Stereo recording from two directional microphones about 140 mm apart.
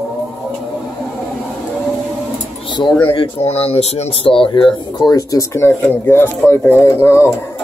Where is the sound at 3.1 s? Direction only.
45° left (ahead or behind); by 7.3 s 15° left (ahead or behind).